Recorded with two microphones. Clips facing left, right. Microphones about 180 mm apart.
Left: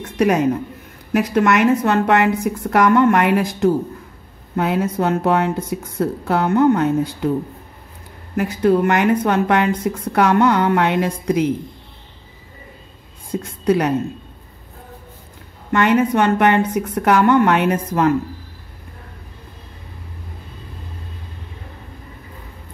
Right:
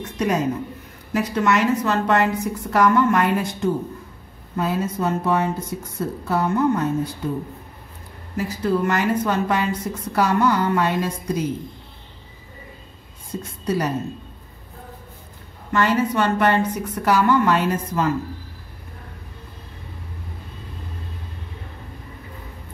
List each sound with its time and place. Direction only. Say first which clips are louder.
0.2 s a woman's voice: left 6 dB; 65° left (ahead or behind); by 3.7 s 80° left
4.6 s speech: left 4 dB; 70° left (ahead or behind)
8.4 s a woman's voice: left 6 dB; 65° left (ahead or behind)
13.3 s speech: left 6 dB; 70° left (ahead or behind)
15.7 s a woman's voice: left 4 dB; 65° left (ahead or behind)